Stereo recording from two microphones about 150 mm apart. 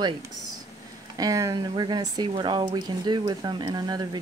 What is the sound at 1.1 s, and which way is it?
Speech, 25° right (ahead or behind).